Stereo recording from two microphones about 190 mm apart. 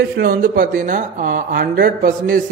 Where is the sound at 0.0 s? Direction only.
50° right (ahead or behind).